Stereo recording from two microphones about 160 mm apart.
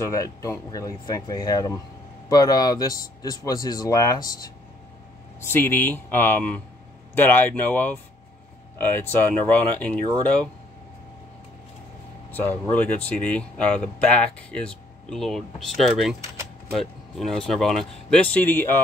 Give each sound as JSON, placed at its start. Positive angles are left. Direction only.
{"t": 0.1, "sound": "speech", "side_deg": 20}
{"t": 12.3, "sound": "speech", "side_deg": 10}